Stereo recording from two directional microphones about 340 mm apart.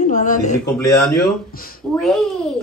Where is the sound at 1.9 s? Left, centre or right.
Centre.